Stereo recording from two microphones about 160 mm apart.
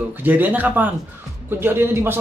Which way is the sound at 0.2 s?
10° right (ahead or behind).